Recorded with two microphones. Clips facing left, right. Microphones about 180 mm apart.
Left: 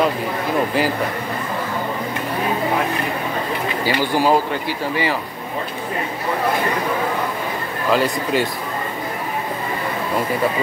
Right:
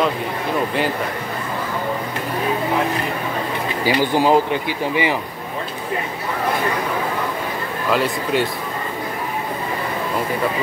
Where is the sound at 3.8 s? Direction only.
15° right (ahead or behind).